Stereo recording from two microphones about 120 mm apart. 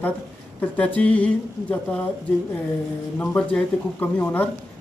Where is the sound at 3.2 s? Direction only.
15° left (ahead or behind).